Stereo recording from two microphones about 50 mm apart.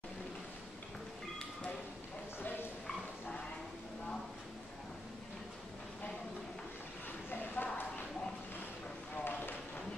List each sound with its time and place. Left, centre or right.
2.4 s a sound: left
7.2 s clip-clop: left
9.1 s run: left